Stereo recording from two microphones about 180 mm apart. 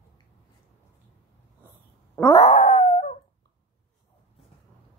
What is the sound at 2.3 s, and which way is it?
Dog, 25° left (ahead or behind).